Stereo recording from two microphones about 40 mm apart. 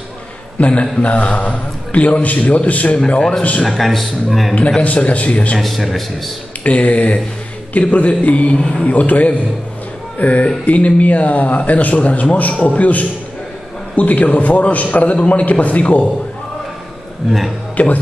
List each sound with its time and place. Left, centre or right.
0.6 s speech: left
3.1 s a man's voice: left
3.6 s a man's voice: centre
4.6 s speech: left
5.6 s a man's voice: centre
6.6 s speech: left
8.5 s a man's voice: centre
8.8 s speech: left
17.8 s speech: left